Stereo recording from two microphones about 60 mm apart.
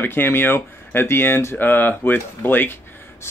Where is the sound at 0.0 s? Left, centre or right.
Left.